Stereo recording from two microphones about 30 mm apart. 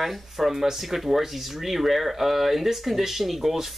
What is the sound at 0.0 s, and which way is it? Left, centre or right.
Speech, centre.